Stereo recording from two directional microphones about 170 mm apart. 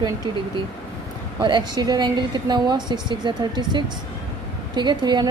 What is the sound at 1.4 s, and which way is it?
A woman's voice, 25° right (ahead or behind).